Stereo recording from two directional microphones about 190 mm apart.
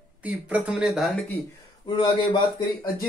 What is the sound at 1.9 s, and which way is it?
Speech, 25° left (ahead or behind).